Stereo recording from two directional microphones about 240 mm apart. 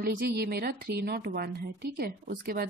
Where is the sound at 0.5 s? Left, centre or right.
Right.